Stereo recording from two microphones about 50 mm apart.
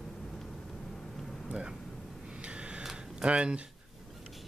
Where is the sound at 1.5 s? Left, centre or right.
Centre.